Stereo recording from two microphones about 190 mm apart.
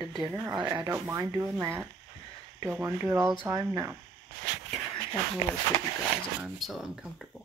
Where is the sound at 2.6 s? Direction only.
15° right (ahead or behind).